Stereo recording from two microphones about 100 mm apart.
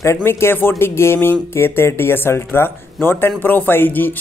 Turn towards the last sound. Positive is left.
turn(degrees=20)  # may be behind; listen again after turning